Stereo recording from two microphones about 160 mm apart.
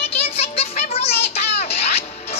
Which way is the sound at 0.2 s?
40° left (ahead or behind).